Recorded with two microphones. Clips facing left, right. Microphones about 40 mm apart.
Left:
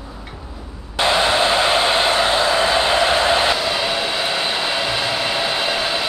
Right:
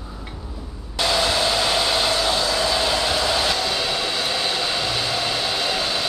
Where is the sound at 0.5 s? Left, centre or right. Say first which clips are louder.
Left 5 dB; left.